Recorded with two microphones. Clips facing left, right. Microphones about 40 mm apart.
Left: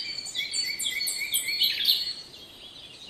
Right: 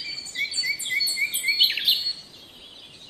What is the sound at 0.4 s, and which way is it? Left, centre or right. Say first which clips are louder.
Cricket: right 6 dB; right.